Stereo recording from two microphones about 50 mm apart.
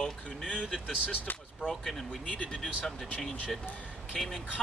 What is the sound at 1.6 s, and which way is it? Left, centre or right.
Speech, centre.